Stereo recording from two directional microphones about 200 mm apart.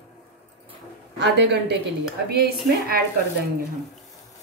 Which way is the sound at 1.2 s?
60° right (ahead or behind).